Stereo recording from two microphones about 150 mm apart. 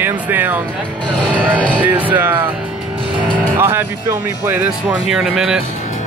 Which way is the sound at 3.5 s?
15° right (ahead or behind).